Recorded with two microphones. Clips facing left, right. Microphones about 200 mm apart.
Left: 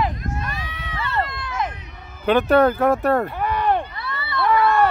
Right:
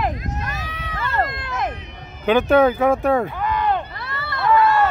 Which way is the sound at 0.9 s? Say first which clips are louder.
Right 2 dB; 50° right (ahead or behind).